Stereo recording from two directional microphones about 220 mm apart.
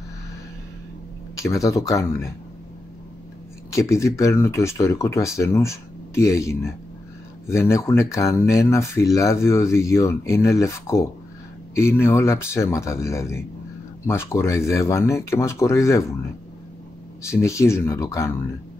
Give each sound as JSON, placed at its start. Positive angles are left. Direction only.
{"t": 1.3, "sound": "speech", "side_deg": 15}
{"t": 3.7, "sound": "speech", "side_deg": 15}
{"t": 17.3, "sound": "speech", "side_deg": 15}